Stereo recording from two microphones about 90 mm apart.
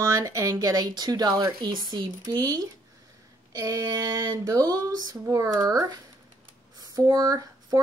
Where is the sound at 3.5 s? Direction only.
40° right (ahead or behind).